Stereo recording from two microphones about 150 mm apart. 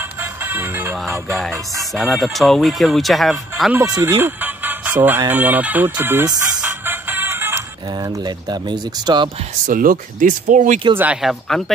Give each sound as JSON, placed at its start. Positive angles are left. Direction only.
{"t": 0.2, "sound": "music", "side_deg": -15}
{"t": 1.3, "sound": "speech", "side_deg": 0}
{"t": 3.7, "sound": "speech", "side_deg": -20}
{"t": 6.6, "sound": "music", "side_deg": -15}
{"t": 8.2, "sound": "speech", "side_deg": -30}
{"t": 9.7, "sound": "speech", "side_deg": -65}
{"t": 11.0, "sound": "speech", "side_deg": -5}